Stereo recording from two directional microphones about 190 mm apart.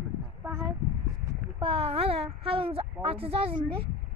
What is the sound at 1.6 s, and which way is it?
A child's voice, 30° right (ahead or behind).